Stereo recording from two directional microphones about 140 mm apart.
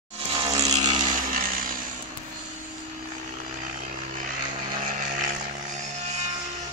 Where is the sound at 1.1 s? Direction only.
85° right.